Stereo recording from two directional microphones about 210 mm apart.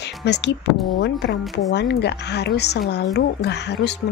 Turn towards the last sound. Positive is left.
turn(degrees=55)  # may be behind; listen again after turning